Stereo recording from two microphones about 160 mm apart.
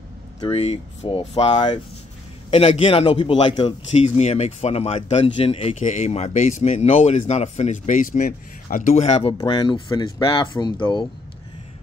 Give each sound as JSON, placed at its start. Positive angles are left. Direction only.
{"t": 0.4, "sound": "speech", "side_deg": 40}
{"t": 4.0, "sound": "speech", "side_deg": 45}
{"t": 9.4, "sound": "speech", "side_deg": 30}